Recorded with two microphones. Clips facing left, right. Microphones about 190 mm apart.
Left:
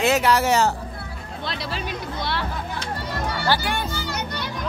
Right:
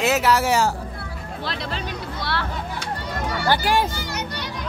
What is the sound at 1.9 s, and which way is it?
Speech, 15° left (ahead or behind).